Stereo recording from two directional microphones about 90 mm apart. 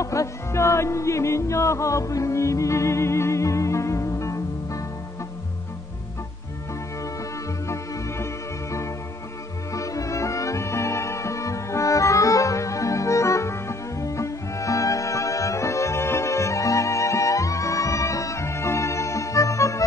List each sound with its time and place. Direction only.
0.0 s music: 35° left (ahead or behind)
7.6 s music: 35° left (ahead or behind)
9.8 s music: 40° left (ahead or behind)